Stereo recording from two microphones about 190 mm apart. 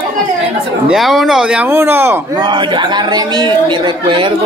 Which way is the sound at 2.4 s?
25° right (ahead or behind).